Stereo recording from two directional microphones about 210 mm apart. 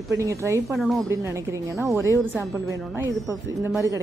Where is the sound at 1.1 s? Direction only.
15° right (ahead or behind).